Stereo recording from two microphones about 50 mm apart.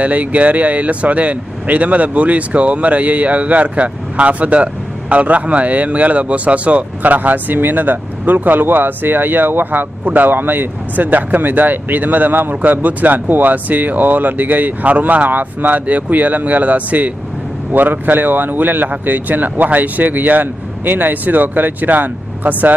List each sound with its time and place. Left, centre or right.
0.0 s speech: right